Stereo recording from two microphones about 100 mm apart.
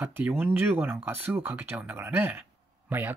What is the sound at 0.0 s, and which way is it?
Speech, 15° right (ahead or behind).